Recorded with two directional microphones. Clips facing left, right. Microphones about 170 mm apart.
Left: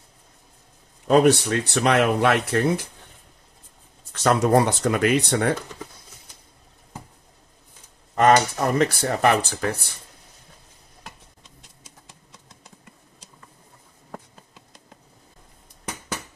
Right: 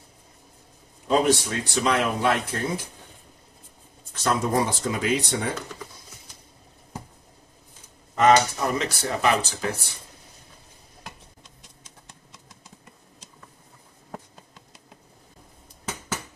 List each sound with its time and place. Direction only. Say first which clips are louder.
1.0 s speech: left 5 dB; 65° left (ahead or behind)
4.1 s speech: left 6 dB; 70° left (ahead or behind)
8.2 s speech: left 1 dB; 50° left (ahead or behind)
14.3 s insect: even; centre (ahead or behind)